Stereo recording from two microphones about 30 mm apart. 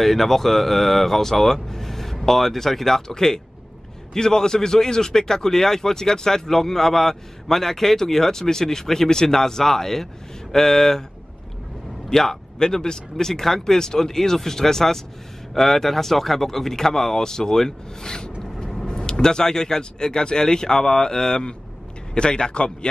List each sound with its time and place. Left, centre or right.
0.0 s speech: centre
12.1 s speech: centre; by 22.8 s left